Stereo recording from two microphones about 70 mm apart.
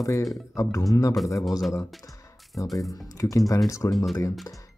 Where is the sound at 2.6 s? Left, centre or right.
Left.